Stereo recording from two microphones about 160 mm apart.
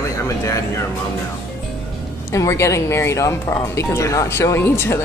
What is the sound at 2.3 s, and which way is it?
Speech, 15° left (ahead or behind).